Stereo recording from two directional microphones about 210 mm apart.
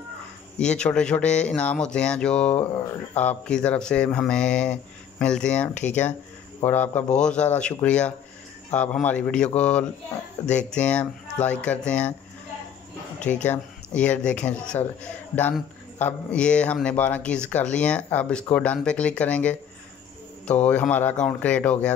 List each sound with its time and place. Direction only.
0.6 s speech: 5° left (ahead or behind)
13.3 s speech: 5° left (ahead or behind)